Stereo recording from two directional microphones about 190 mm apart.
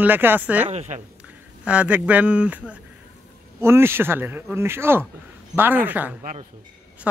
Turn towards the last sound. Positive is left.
turn(degrees=-10)  # may be behind; listen again after turning